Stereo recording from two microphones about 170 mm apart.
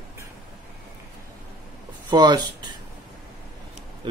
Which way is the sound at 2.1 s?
25° right (ahead or behind).